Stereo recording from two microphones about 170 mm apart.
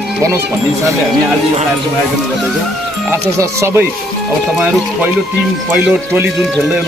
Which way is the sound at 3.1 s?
15° right (ahead or behind).